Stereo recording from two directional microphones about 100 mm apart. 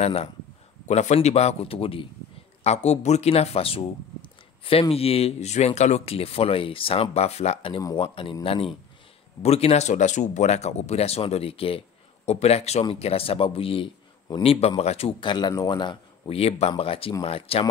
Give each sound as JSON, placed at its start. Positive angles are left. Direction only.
{"t": 0.0, "sound": "speech", "side_deg": 90}
{"t": 2.6, "sound": "a man's voice", "side_deg": 90}
{"t": 8.0, "sound": "speech", "side_deg": 55}
{"t": 9.4, "sound": "speech", "side_deg": 90}
{"t": 12.3, "sound": "speech", "side_deg": 90}
{"t": 13.0, "sound": "a man's voice", "side_deg": 75}
{"t": 14.4, "sound": "speech", "side_deg": 80}
{"t": 15.1, "sound": "speech", "side_deg": 50}
{"t": 16.3, "sound": "a man's voice", "side_deg": 80}